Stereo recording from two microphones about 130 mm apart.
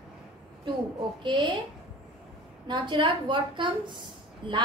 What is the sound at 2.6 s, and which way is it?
A woman's voice, 35° right (ahead or behind).